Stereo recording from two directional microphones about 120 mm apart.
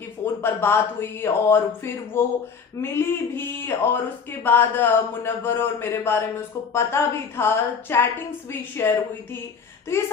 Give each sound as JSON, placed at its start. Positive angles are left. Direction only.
{"t": 0.2, "sound": "speech", "side_deg": 20}